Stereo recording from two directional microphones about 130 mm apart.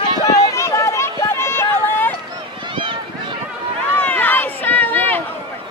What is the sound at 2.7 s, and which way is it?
Run, 40° right (ahead or behind).